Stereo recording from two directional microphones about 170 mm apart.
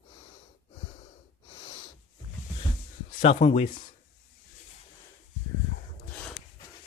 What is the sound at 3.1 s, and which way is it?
Speech, 40° left (ahead or behind).